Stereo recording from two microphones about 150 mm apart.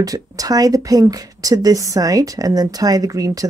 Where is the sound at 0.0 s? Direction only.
25° right (ahead or behind).